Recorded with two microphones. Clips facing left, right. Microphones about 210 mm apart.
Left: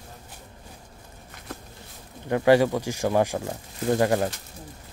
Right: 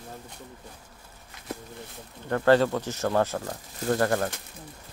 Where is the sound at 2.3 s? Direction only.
10° left (ahead or behind).